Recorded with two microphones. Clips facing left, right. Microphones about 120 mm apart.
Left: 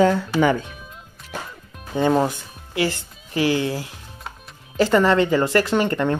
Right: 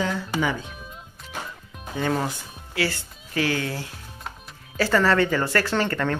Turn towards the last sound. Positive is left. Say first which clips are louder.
# left 4 dB
turn(degrees=15)  # may be behind; listen again after turning